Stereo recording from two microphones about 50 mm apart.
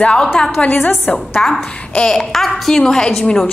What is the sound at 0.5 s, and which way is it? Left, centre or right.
Speech, left.